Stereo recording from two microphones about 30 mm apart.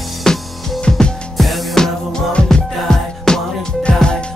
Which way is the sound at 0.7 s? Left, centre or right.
Left.